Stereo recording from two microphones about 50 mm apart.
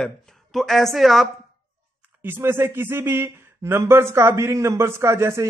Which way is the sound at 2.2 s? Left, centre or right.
Right.